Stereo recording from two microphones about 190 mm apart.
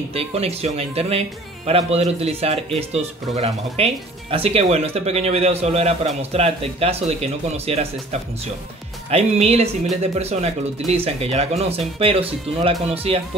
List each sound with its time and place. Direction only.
0.1 s speech: 30° right (ahead or behind)